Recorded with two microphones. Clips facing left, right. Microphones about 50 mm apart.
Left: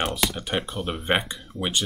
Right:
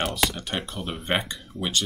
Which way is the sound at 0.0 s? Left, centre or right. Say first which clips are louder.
Even; centre.